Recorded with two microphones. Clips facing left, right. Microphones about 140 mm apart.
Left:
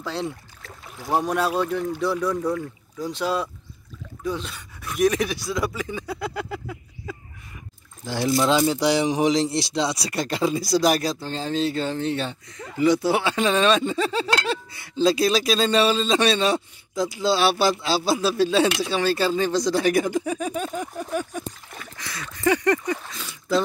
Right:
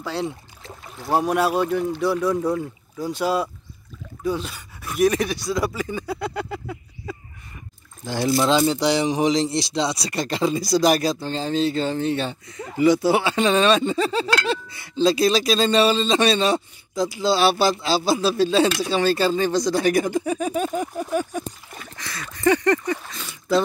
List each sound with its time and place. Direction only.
0.0 s speech: centre (ahead or behind)
2.3 s speech: 20° right (ahead or behind)
3.0 s speech: 10° right (ahead or behind)
21.9 s speech: 10° left (ahead or behind)